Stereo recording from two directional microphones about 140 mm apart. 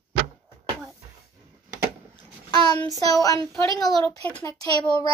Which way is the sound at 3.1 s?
25° left (ahead or behind).